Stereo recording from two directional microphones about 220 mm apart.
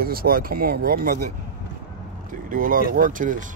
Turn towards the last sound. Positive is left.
turn(degrees=-35)  # may be behind; listen again after turning